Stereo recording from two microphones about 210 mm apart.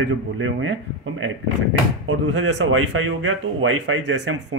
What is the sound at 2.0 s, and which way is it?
Speech, 80° right.